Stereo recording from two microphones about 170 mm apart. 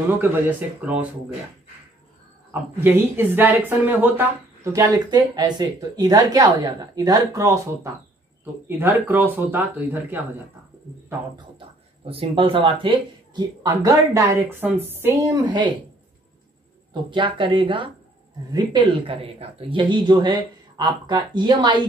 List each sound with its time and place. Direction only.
0.2 s a woman's voice: 10° right (ahead or behind)
2.5 s a woman's voice: 10° right (ahead or behind)
11.3 s speech: 30° right (ahead or behind)
16.9 s speech: 30° right (ahead or behind)